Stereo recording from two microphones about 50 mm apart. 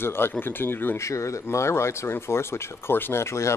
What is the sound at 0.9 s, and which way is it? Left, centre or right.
Speech, left.